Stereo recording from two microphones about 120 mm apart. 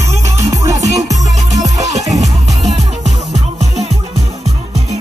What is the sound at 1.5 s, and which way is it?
Music, 75° right (ahead or behind).